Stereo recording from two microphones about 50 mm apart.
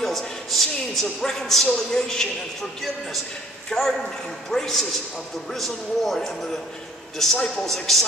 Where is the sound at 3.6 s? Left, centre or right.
Centre.